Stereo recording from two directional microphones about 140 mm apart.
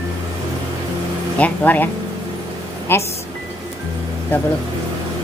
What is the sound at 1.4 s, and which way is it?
Speech, 10° left (ahead or behind).